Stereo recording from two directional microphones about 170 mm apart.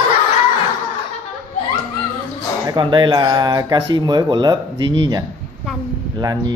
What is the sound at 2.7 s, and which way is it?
Speech, 30° right (ahead or behind).